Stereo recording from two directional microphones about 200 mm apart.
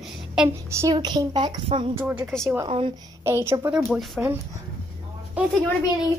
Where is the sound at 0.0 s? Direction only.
5° right (ahead or behind); by 1.9 s 25° right (ahead or behind).